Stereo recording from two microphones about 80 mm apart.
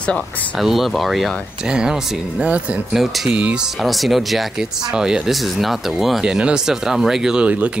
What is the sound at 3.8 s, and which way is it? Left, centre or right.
Speech, centre.